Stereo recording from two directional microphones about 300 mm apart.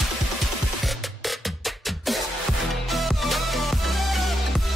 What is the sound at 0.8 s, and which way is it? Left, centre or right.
Music, centre.